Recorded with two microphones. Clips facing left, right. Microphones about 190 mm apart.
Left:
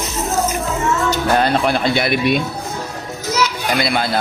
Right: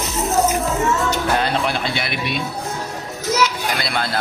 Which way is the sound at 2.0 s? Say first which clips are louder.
Left 9 dB; 45° left (ahead or behind).